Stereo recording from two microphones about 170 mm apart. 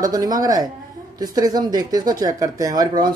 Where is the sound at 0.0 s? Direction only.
20° right (ahead or behind).